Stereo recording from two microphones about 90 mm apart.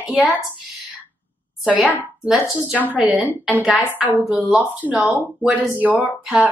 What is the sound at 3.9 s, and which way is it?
Speech, 20° right (ahead or behind).